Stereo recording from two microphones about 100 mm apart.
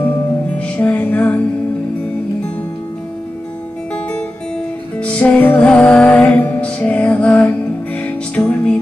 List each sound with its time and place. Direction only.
0.6 s music: 15° left (ahead or behind)
4.9 s music: 10° left (ahead or behind)